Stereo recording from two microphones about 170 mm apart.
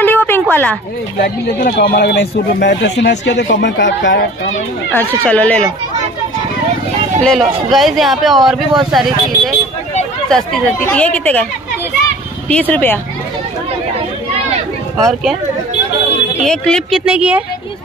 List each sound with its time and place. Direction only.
0.0 s a sound: 10° left (ahead or behind)
1.2 s speech: 65° left (ahead or behind); by 4.3 s 90° left
4.9 s speech: 10° left (ahead or behind)
7.2 s speech: centre (ahead or behind)
12.4 s speech: 10° left (ahead or behind)
15.0 s speech: centre (ahead or behind)
16.4 s speech: 5° left (ahead or behind)
17.0 s speech: 5° right (ahead or behind)